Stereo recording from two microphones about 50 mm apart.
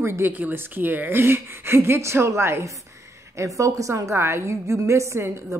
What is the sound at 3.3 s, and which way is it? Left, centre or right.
A woman's voice, right.